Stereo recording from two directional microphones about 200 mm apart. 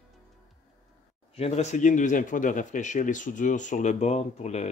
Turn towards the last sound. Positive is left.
turn(degrees=35)  # may be behind; listen again after turning